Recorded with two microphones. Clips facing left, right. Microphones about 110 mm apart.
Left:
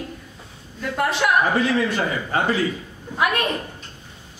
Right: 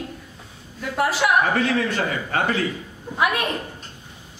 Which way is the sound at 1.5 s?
15° left (ahead or behind).